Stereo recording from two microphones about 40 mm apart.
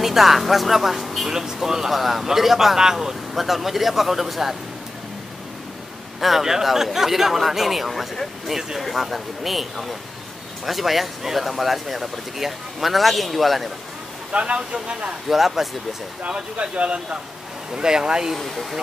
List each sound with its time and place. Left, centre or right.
0.0 s speech: centre
3.3 s speech: centre
6.2 s speech: centre
14.3 s speech: right
15.2 s speech: centre
16.2 s speech: right
17.7 s speech: centre
18.4 s speech: centre